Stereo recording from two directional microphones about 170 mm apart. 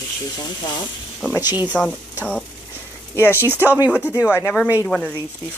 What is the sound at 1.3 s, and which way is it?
Speech, 25° left (ahead or behind).